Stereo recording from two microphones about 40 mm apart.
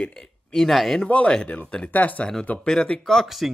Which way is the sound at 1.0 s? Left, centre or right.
Left.